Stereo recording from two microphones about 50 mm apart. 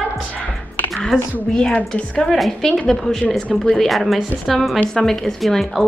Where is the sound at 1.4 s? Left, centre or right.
Centre.